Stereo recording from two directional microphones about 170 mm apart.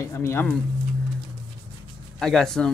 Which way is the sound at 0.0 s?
15° left (ahead or behind).